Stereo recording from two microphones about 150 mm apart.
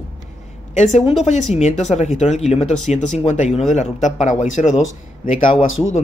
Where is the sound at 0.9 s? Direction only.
45° left (ahead or behind).